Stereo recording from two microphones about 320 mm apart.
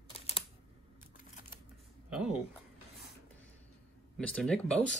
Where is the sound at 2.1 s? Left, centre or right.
Centre.